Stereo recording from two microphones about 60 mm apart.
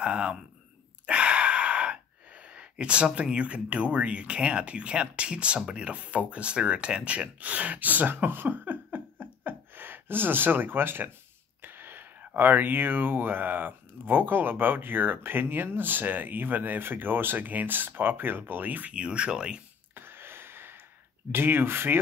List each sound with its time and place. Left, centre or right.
0.0 s speech: centre
20.0 s a sound: right
21.3 s speech: right